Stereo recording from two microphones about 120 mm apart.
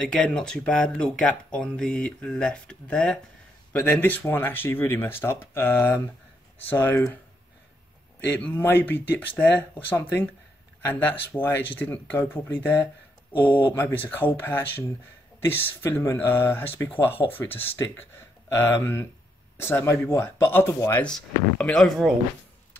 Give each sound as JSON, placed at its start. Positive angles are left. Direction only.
{"t": 0.0, "sound": "speech", "side_deg": 10}
{"t": 8.3, "sound": "speech", "side_deg": 15}
{"t": 21.0, "sound": "speech", "side_deg": 10}